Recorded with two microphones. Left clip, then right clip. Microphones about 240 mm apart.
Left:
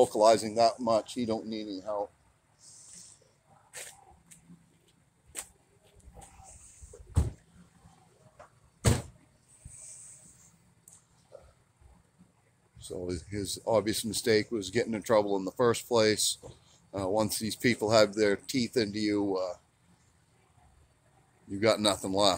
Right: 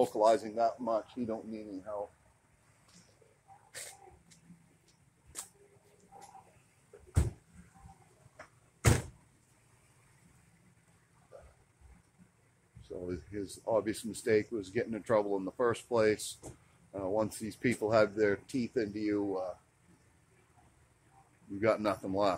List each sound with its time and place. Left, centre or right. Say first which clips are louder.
0.0 s speech: left 5 dB; left; by 2.0 s centre
12.8 s speech: left 4 dB; left
21.5 s speech: left 4 dB; left